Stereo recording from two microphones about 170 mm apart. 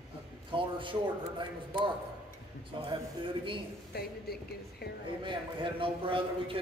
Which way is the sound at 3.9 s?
70° left (ahead or behind).